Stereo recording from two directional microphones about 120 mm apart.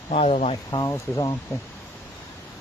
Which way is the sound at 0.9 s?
30° left (ahead or behind).